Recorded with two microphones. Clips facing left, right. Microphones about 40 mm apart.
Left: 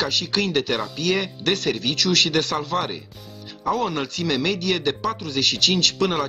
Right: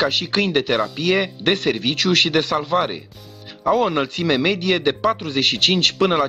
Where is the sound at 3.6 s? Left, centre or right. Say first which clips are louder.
Right 5 dB; right.